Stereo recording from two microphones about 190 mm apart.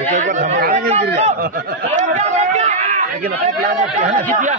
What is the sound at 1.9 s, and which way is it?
A man's voice, 35° right (ahead or behind).